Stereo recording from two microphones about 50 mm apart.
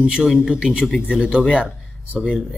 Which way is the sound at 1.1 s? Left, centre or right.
Centre.